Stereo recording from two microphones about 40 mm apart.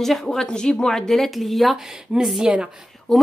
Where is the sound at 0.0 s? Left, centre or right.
Centre.